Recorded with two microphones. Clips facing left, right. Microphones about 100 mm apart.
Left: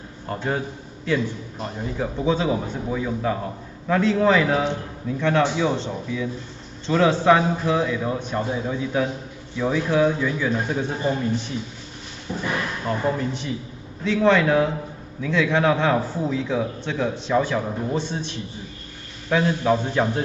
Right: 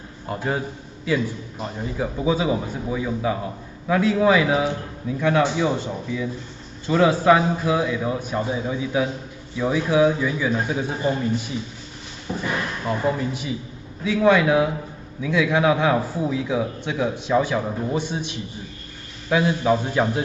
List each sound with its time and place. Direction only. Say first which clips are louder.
0.3 s a man's voice: even; 5° right (ahead or behind)
12.8 s a man's voice: right 1 dB; 5° right (ahead or behind)